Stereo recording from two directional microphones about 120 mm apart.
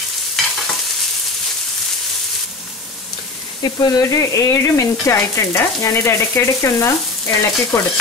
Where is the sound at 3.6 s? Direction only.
35° left (ahead or behind).